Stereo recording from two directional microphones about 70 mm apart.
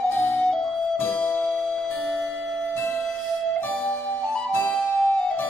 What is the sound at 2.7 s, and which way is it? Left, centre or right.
Music, left.